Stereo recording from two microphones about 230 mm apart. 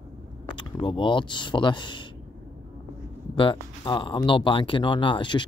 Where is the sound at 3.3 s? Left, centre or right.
Left.